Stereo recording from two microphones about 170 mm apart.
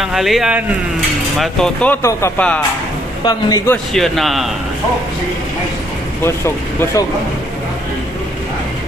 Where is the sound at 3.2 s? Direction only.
20° left (ahead or behind).